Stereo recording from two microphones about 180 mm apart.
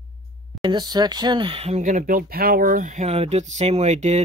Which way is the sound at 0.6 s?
25° right (ahead or behind).